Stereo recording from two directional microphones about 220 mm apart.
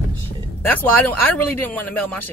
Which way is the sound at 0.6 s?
10° left (ahead or behind).